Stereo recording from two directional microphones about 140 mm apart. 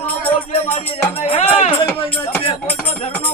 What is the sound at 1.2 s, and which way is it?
Speech, 50° left (ahead or behind).